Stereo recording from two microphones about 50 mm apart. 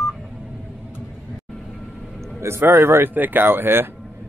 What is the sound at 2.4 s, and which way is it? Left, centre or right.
Speech, right.